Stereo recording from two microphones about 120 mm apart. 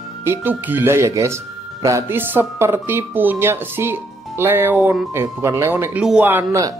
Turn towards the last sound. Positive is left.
turn(degrees=-15)  # may be behind; listen again after turning